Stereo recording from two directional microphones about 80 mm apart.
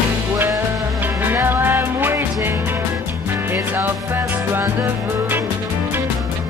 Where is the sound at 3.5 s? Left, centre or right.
Right.